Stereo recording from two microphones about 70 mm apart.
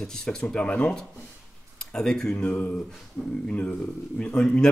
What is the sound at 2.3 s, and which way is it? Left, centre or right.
A man's voice, left.